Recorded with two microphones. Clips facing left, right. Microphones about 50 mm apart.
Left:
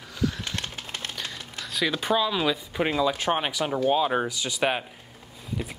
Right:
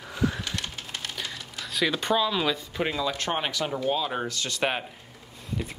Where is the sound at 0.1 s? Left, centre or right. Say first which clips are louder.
Right 1 dB; right.